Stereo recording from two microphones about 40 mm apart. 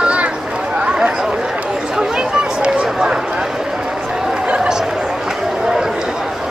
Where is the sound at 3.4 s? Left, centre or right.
Centre.